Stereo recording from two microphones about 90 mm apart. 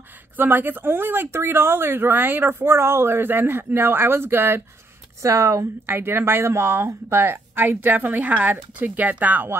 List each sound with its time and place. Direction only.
0.4 s speech: 20° right (ahead or behind)
5.2 s speech: 35° right (ahead or behind)
5.9 s speech: 25° right (ahead or behind)